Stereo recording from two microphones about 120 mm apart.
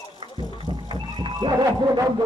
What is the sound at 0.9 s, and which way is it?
Music, 40° right (ahead or behind).